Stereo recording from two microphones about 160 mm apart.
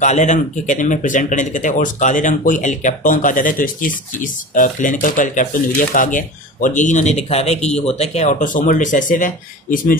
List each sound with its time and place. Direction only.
0.0 s speech: 50° left (ahead or behind)